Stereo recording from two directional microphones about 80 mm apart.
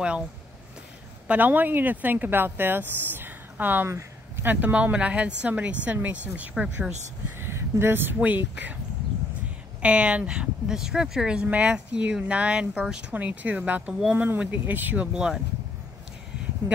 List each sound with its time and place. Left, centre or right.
1.2 s a woman's voice: centre
6.5 s a woman's voice: centre
7.3 s speech: right
9.8 s a woman's voice: centre
15.1 s a woman's voice: centre
16.6 s speech: right